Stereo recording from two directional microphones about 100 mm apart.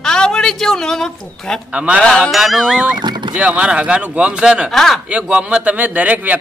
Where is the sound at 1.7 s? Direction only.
10° right (ahead or behind).